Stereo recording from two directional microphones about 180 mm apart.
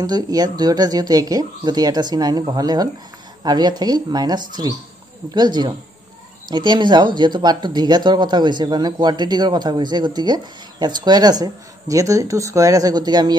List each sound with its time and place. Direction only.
0.0 s speech: 20° right (ahead or behind)